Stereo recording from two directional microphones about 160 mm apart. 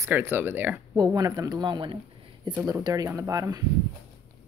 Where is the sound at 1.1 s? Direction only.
25° right (ahead or behind).